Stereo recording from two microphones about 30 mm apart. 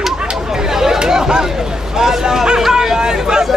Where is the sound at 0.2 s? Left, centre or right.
Right.